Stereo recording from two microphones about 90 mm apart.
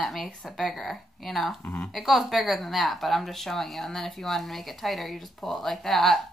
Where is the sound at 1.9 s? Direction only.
Centre (ahead or behind).